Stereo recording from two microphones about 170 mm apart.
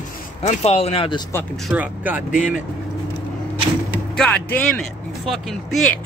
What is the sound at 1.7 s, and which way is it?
Speech, 10° right (ahead or behind).